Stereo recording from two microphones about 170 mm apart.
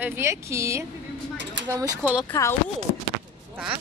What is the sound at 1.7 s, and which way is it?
Speech, 20° right (ahead or behind).